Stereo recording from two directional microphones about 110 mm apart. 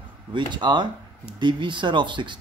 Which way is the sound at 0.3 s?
45° right (ahead or behind).